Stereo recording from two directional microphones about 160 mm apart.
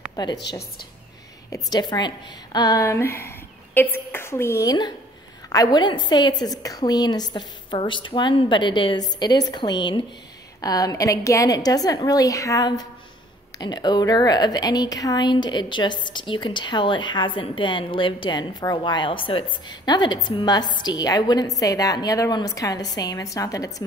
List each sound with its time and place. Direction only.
0.1 s a woman's voice: 25° left (ahead or behind)
1.5 s a woman's voice: 25° left (ahead or behind)